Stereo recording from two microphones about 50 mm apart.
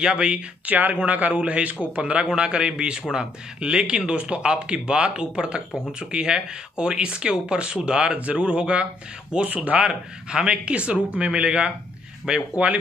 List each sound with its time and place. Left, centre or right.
0.0 s speech: centre
0.7 s a man's voice: right; by 12.4 s centre